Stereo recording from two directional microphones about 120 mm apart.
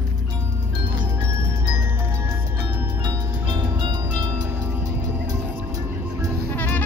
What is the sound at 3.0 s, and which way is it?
Music, 40° right (ahead or behind).